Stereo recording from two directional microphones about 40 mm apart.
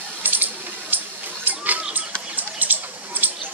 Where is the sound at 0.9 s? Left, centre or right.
Right.